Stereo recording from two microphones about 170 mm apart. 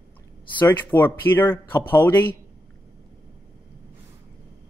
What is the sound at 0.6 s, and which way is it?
Speech, 10° left (ahead or behind).